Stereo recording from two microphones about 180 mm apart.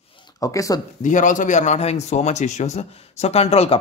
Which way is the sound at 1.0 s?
45° left (ahead or behind).